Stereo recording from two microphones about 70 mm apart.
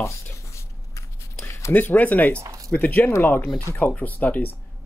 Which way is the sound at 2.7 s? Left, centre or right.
Left.